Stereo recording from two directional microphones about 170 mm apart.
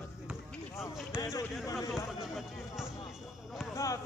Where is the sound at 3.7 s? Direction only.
20° left (ahead or behind).